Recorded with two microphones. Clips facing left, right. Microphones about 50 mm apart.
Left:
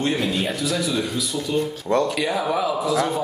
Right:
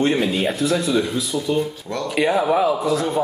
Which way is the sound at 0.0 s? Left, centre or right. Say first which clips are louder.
Right 4 dB; centre.